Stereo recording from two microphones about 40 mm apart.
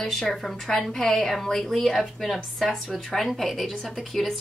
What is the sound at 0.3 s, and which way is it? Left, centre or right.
A woman's voice, centre.